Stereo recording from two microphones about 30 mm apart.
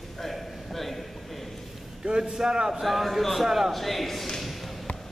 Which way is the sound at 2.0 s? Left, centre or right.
Right.